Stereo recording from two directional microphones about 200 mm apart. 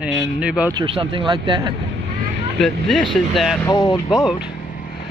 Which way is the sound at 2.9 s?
Centre (ahead or behind).